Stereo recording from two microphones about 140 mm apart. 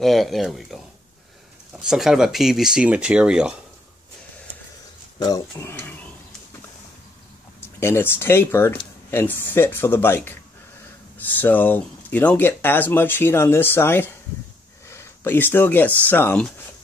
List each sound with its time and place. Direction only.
0.0 s speech: centre (ahead or behind)
5.2 s speech: 20° left (ahead or behind)
7.8 s speech: 15° left (ahead or behind)
11.3 s speech: 15° left (ahead or behind)